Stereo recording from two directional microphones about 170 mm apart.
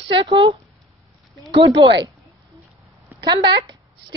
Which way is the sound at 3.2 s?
25° right (ahead or behind).